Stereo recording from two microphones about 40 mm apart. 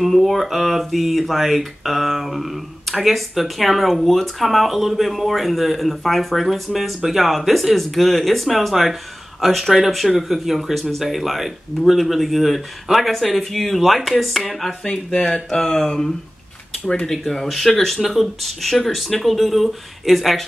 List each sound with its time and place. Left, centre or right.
0.0 s speech: centre
14.9 s speech: left; by 20.4 s centre